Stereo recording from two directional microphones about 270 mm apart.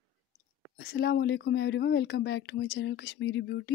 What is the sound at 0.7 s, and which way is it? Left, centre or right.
A woman's voice, left.